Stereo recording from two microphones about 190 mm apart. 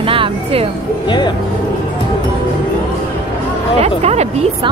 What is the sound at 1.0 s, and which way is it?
Speech, 25° left (ahead or behind).